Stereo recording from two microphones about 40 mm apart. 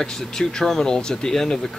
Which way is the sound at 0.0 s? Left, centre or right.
Centre.